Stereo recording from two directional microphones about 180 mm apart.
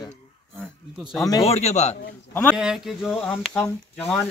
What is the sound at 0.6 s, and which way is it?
Speech, centre (ahead or behind).